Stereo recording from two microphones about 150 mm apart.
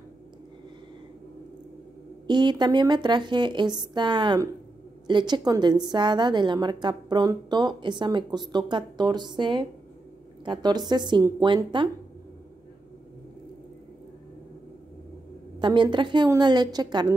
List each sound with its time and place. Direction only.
2.2 s a woman's voice: 30° right (ahead or behind)
15.6 s a woman's voice: 30° right (ahead or behind)